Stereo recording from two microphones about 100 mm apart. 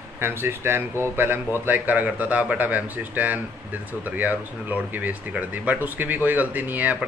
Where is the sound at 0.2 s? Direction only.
25° right (ahead or behind).